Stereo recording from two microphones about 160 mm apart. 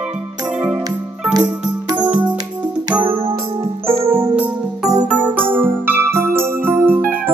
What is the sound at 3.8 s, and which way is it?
Music, 35° right (ahead or behind).